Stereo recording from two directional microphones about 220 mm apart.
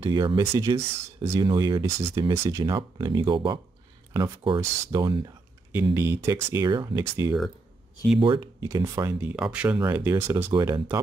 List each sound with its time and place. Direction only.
0.0 s speech: 20° right (ahead or behind)